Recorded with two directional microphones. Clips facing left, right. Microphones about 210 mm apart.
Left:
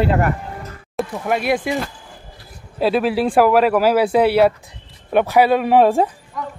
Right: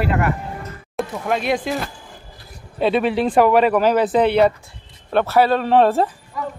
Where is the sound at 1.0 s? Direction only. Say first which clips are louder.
Left 1 dB; 5° left (ahead or behind).